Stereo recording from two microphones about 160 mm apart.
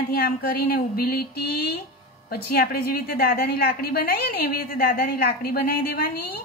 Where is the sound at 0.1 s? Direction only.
70° left (ahead or behind).